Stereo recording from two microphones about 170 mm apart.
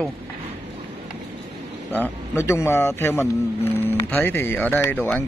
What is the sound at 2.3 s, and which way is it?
Speech, 15° left (ahead or behind).